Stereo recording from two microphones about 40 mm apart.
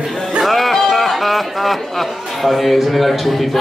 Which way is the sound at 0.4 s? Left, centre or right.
Centre.